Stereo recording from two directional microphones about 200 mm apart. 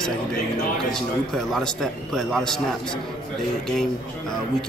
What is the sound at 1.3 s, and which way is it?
A man's voice, 5° left (ahead or behind).